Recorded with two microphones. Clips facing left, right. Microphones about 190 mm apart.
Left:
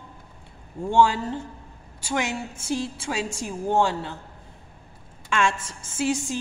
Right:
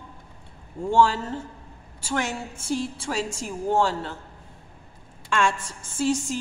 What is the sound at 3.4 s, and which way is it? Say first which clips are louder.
Speech: left 1 dB; 15° left (ahead or behind).